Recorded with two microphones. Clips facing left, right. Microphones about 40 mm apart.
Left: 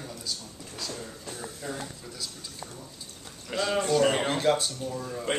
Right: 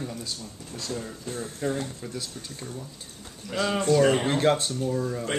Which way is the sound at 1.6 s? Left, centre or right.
Right.